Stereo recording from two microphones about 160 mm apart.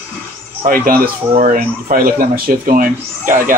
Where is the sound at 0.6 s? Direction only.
60° right (ahead or behind).